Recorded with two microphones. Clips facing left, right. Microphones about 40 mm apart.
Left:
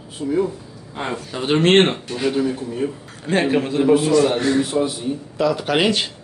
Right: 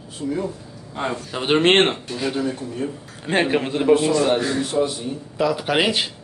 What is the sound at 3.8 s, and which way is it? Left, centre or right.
Speech, centre.